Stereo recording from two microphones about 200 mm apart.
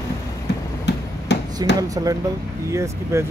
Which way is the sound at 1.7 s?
15° right (ahead or behind).